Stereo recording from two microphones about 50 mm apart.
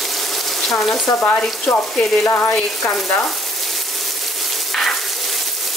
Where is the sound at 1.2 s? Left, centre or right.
Left.